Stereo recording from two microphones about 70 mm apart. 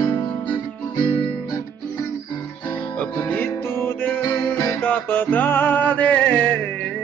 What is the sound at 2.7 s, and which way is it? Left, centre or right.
Music, left.